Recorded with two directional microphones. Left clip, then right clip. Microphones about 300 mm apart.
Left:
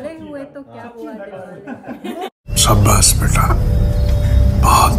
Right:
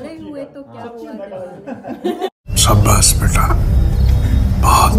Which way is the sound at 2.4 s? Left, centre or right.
Centre.